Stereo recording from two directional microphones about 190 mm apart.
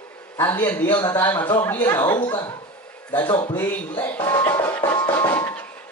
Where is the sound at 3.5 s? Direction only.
10° left (ahead or behind).